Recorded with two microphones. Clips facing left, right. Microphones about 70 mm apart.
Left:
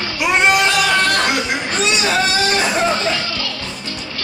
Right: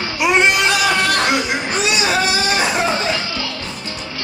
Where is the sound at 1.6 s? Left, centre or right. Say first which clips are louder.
Even; centre.